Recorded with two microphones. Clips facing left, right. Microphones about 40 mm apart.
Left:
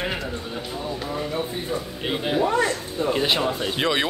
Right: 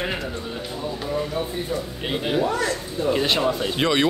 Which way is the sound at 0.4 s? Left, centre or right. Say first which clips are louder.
Right 1 dB; centre.